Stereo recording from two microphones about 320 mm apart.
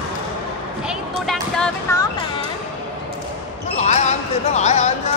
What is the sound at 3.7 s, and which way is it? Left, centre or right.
Basketball bounce, left.